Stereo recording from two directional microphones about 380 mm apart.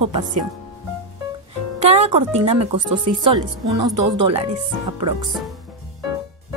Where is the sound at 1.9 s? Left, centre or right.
Centre.